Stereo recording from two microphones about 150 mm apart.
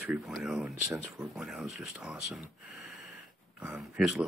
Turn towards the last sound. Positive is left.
turn(degrees=-5)  # may be behind; listen again after turning